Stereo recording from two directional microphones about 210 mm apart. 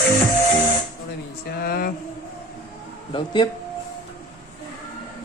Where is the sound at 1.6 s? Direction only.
45° left (ahead or behind).